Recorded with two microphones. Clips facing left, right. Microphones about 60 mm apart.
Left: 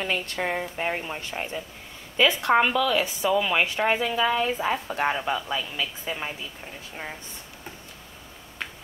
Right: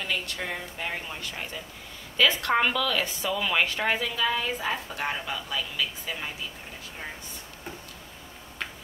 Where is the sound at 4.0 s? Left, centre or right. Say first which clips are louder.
Left 4 dB; left.